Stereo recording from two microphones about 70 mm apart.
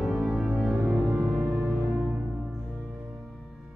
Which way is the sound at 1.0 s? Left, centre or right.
Centre.